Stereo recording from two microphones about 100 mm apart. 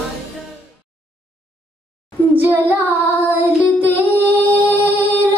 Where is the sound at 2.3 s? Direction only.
20° right (ahead or behind).